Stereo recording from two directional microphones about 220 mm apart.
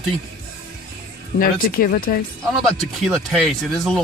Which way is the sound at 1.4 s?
40° left (ahead or behind).